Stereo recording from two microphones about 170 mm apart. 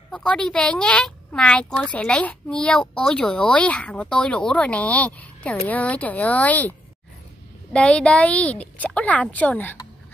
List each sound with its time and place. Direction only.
0.1 s speech: 5° left (ahead or behind)
7.7 s speech: 5° left (ahead or behind)